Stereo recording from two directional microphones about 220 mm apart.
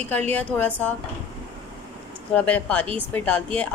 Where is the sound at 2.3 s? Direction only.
5° left (ahead or behind).